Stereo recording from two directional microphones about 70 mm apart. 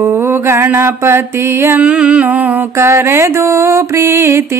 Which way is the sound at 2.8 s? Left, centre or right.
Right.